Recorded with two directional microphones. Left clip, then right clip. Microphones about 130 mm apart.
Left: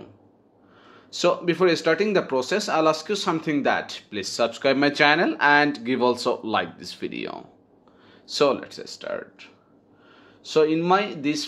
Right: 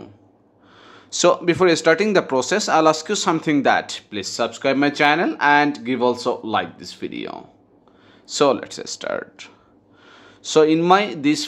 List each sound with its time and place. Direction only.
0.8 s speech: 25° right (ahead or behind); by 7.4 s 5° right (ahead or behind)
8.3 s speech: 20° right (ahead or behind)